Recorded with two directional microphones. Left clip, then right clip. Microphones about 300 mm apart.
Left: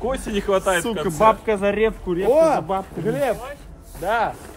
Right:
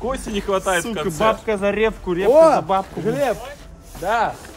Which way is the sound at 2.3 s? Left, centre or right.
Right.